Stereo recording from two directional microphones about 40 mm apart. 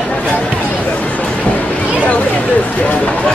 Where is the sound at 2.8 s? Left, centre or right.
Left.